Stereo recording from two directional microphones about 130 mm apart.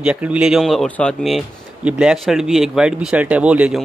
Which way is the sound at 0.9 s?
10° left (ahead or behind).